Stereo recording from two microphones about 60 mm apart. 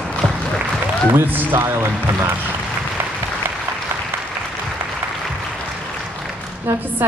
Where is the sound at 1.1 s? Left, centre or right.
Right.